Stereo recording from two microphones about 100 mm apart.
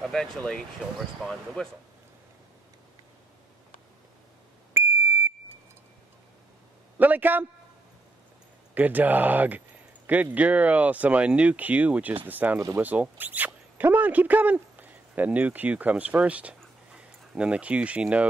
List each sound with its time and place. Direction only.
0.0 s a sound: 5° left (ahead or behind)
1.2 s speech: 5° left (ahead or behind)
4.7 s smoke detector: 25° right (ahead or behind)
7.0 s a sound: 20° right (ahead or behind)
8.7 s speech: 15° right (ahead or behind)
12.5 s speech: 30° right (ahead or behind)
12.8 s speech: 15° right (ahead or behind)